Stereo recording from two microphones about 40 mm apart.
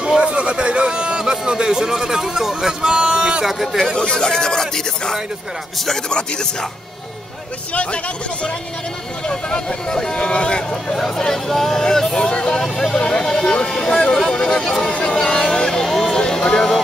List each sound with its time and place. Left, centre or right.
0.2 s speech: right
3.9 s speech: centre
7.7 s speech: left
9.3 s speech: centre
11.0 s speech: centre
12.7 s speech: centre
13.0 s speech: left
15.8 s speech: centre
16.2 s a sound: centre